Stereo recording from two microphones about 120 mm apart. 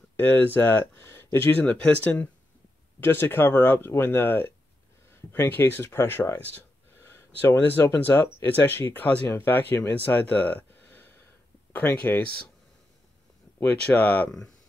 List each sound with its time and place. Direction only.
0.2 s speech: 20° left (ahead or behind)
13.6 s speech: 10° left (ahead or behind)